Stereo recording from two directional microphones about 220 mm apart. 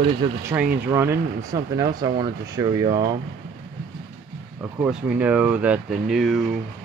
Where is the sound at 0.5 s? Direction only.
10° right (ahead or behind).